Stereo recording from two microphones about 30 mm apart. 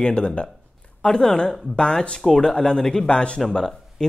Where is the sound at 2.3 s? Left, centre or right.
Centre.